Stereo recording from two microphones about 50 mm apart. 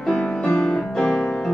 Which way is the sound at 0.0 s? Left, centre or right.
Centre.